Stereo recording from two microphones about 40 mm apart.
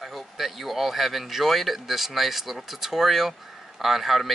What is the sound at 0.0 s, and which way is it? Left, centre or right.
Speech, centre.